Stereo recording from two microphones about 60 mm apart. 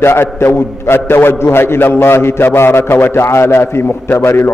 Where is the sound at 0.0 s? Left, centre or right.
Left.